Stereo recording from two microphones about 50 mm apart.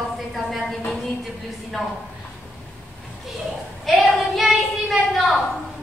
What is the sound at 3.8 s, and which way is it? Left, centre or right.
A woman's voice, centre.